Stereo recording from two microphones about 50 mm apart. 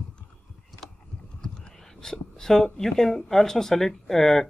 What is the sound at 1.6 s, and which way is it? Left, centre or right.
Speech, centre.